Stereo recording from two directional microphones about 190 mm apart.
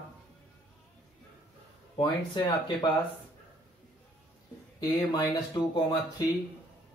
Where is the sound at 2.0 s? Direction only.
25° left (ahead or behind).